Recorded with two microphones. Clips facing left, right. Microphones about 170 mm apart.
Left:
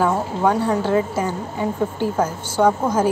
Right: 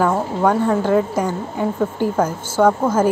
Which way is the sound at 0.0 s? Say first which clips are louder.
Right 2 dB; 5° left (ahead or behind).